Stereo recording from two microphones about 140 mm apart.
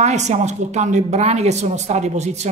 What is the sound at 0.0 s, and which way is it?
A woman's voice, 55° right (ahead or behind).